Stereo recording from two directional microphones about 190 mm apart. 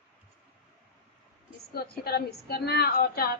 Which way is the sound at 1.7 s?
55° left (ahead or behind).